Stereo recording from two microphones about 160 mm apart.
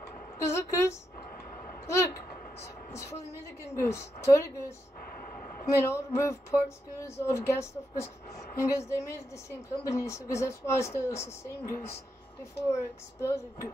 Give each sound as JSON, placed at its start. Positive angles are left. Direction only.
{"t": 0.4, "sound": "a woman's voice", "side_deg": 15}
{"t": 1.9, "sound": "a sound", "side_deg": 20}
{"t": 3.0, "sound": "a woman's voice", "side_deg": 20}
{"t": 5.8, "sound": "speech", "side_deg": 15}